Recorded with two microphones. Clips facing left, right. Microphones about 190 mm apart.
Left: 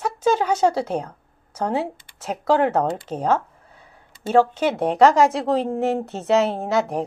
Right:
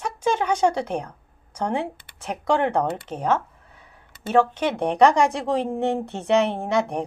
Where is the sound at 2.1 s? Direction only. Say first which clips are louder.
Left 1 dB; 65° right (ahead or behind).